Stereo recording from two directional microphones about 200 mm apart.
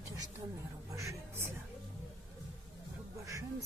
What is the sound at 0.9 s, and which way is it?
Music, 15° right (ahead or behind).